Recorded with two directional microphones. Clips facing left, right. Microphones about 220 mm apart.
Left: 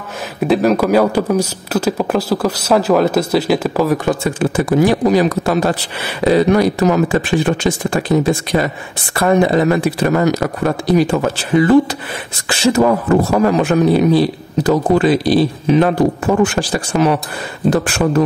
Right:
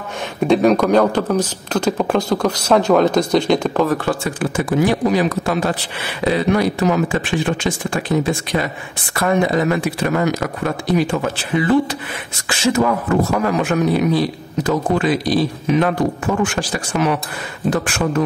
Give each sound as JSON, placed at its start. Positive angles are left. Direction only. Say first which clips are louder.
{"t": 0.4, "sound": "speech", "louder": "even", "side_deg": 5}
{"t": 4.6, "sound": "speech", "louder": "left 3 dB", "side_deg": 40}